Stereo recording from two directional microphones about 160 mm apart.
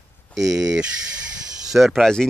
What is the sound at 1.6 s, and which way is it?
Speech, centre (ahead or behind).